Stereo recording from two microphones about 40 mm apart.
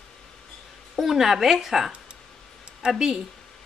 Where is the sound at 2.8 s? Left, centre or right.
Right.